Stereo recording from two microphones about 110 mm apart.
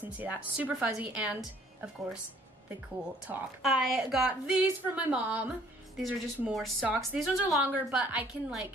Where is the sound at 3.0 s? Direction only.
15° right (ahead or behind).